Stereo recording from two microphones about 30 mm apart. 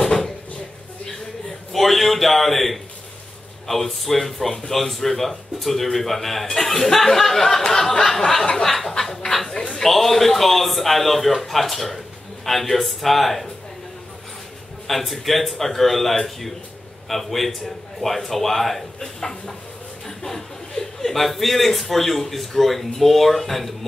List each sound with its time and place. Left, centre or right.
0.0 s a sound: centre
1.7 s a man's voice: centre
14.9 s a man's voice: centre
19.1 s a man's voice: centre